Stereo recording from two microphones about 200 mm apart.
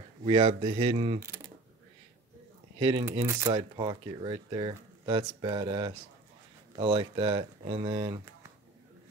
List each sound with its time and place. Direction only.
0.2 s speech: 25° right (ahead or behind)
2.8 s speech: 20° right (ahead or behind)